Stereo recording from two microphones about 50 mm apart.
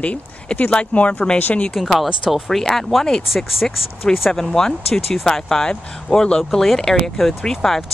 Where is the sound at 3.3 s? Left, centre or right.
Centre.